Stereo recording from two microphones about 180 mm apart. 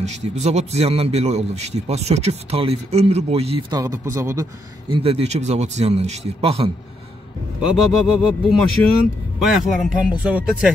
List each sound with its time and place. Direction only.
0.0 s a man's voice: 40° right (ahead or behind)
3.7 s speech: 15° right (ahead or behind)
4.9 s a man's voice: 30° right (ahead or behind)
7.7 s speech: centre (ahead or behind)